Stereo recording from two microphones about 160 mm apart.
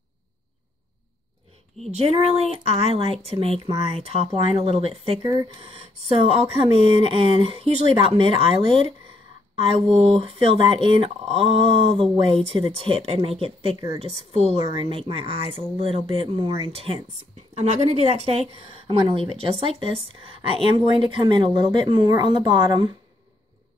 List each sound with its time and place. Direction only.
1.9 s speech: 40° right (ahead or behind)